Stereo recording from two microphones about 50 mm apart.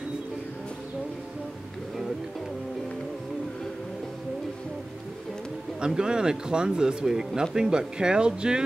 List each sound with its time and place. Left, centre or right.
5.8 s speech: centre